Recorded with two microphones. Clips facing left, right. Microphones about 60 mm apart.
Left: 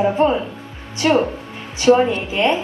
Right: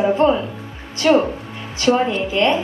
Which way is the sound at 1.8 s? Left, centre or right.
Left.